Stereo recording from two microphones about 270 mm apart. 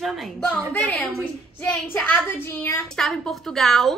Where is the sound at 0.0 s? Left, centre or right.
Centre.